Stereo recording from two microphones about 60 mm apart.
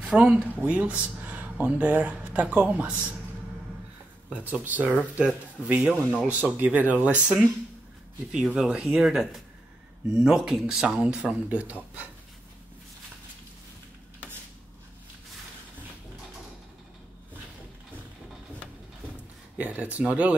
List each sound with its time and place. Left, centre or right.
0.0 s speech: centre
4.3 s speech: right
8.3 s speech: centre
8.8 s speech: centre; by 12.1 s right
19.5 s speech: right